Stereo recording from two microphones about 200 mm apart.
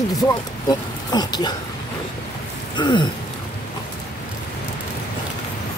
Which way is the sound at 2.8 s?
20° left (ahead or behind).